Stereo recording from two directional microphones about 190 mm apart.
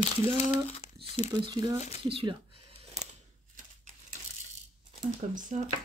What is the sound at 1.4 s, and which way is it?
Speech, 20° right (ahead or behind).